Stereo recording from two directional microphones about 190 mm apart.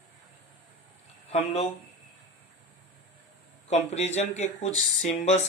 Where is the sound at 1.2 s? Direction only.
35° left (ahead or behind).